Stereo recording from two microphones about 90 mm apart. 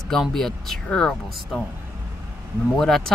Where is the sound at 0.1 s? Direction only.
5° left (ahead or behind).